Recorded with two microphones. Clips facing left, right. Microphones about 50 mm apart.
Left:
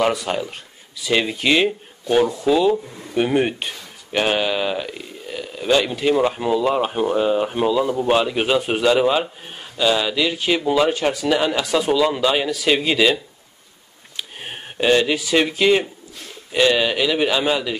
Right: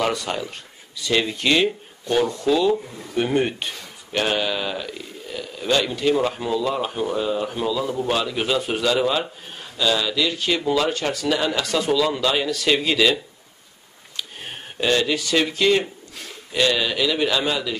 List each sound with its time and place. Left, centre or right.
0.0 s speech: centre
14.1 s a sound: centre
15.3 s speech: centre